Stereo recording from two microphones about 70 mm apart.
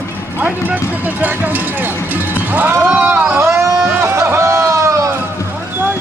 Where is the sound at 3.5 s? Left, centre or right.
Right.